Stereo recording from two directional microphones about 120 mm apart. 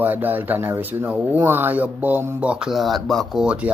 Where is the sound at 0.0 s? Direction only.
15° right (ahead or behind).